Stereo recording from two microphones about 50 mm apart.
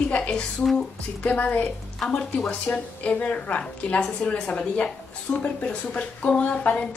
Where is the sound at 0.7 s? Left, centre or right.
Left.